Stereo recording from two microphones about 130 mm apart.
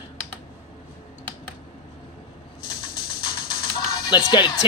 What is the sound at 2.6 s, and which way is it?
Bird, 35° left (ahead or behind).